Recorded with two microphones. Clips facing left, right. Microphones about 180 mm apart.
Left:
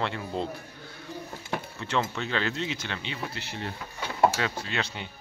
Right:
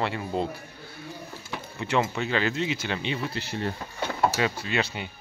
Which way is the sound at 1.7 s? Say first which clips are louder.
Right 5 dB; 10° right (ahead or behind).